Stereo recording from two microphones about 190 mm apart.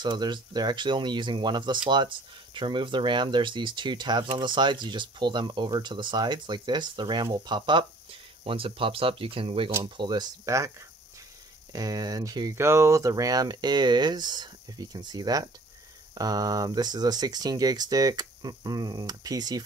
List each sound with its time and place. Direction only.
0.0 s speech: 25° right (ahead or behind)
11.7 s speech: 20° right (ahead or behind)